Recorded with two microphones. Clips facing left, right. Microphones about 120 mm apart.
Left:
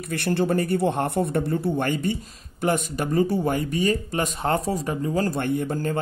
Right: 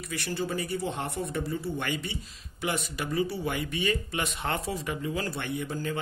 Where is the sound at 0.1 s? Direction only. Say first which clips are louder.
Left 9 dB; 60° left (ahead or behind).